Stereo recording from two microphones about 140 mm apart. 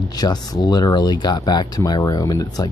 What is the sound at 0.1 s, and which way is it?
Speech, 30° left (ahead or behind).